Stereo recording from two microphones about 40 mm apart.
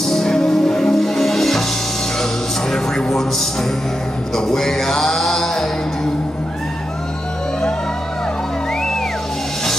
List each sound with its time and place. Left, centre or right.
0.0 s music: centre
2.7 s a sound: centre
4.4 s music: centre